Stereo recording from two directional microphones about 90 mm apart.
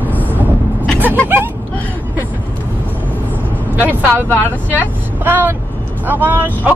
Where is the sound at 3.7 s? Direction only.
20° right (ahead or behind).